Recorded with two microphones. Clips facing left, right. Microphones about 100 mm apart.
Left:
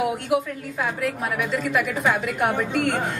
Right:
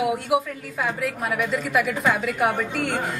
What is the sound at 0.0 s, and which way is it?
A woman's voice, centre (ahead or behind).